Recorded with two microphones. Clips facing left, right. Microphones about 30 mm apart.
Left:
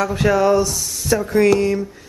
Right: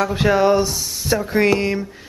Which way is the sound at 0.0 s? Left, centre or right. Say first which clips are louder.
Even; right.